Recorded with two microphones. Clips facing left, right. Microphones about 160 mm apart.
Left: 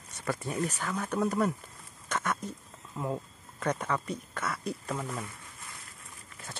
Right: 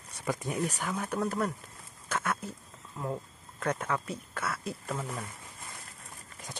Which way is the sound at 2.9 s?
5° left (ahead or behind).